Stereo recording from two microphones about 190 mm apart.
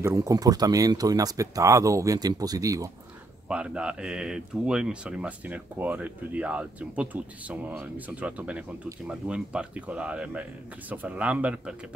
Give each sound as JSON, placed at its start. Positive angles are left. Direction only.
{"t": 0.0, "sound": "speech", "side_deg": -15}
{"t": 3.4, "sound": "speech", "side_deg": -5}